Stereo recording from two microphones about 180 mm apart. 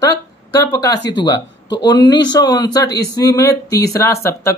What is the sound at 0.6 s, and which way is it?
Speech, 20° left (ahead or behind).